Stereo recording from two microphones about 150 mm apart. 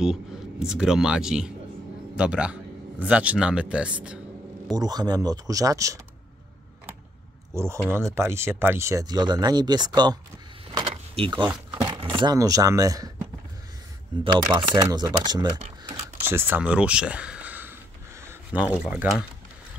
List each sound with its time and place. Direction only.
0.0 s a man's voice: 5° right (ahead or behind)
4.7 s speech: 25° right (ahead or behind)
7.5 s speech: 20° right (ahead or behind)
10.7 s vehicle: 30° right (ahead or behind)
12.2 s speech: 25° right (ahead or behind)
16.3 s speech: 15° right (ahead or behind)